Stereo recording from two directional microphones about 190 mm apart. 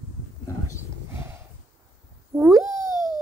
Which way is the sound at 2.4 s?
15° right (ahead or behind).